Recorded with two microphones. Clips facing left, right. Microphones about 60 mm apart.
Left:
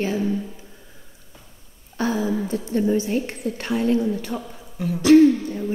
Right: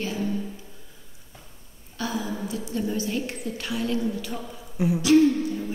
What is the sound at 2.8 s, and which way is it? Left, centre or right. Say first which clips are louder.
A woman's voice: left 6 dB; left.